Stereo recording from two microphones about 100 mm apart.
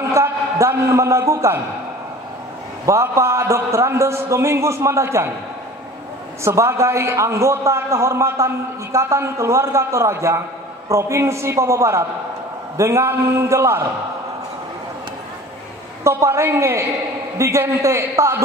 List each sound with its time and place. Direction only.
0.1 s a man's voice: 30° right (ahead or behind)
2.9 s a man's voice: 30° right (ahead or behind)
6.4 s a man's voice: 30° right (ahead or behind)
16.0 s a man's voice: 30° right (ahead or behind)